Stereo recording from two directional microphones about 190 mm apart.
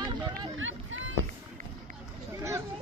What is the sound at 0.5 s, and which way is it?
Speech, 90° right.